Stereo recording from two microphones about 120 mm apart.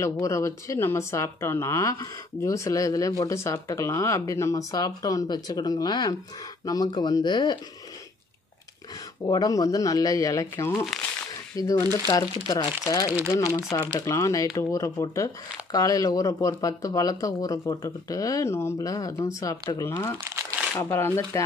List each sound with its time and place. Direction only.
0.0 s speech: 25° left (ahead or behind)
9.2 s speech: 30° left (ahead or behind)